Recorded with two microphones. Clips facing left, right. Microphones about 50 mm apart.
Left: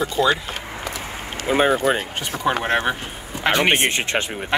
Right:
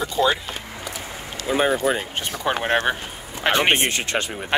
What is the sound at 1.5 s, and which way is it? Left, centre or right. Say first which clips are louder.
Speech: left 2 dB; left.